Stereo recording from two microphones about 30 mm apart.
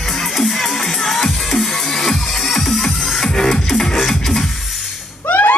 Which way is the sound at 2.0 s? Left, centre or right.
Centre.